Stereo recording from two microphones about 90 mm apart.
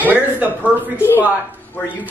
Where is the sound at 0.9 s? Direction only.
25° left (ahead or behind).